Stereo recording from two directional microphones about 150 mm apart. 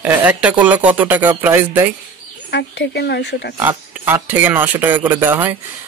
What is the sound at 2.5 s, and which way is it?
Speech, 90° left.